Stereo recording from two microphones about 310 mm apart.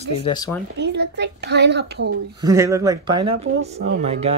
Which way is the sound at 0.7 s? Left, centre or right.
Right.